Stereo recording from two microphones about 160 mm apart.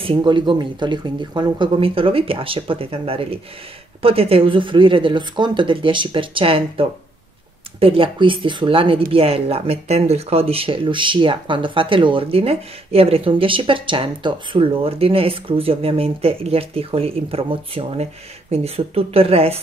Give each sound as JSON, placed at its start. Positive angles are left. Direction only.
{"t": 0.0, "sound": "speech", "side_deg": -30}